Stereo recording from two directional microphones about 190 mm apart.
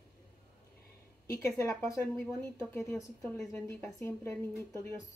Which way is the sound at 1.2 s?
15° left (ahead or behind).